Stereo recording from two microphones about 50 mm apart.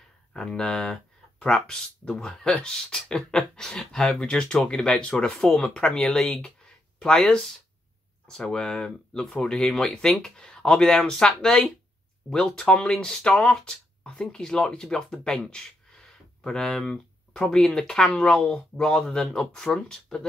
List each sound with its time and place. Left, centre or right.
0.3 s speech: centre
5.3 s speech: centre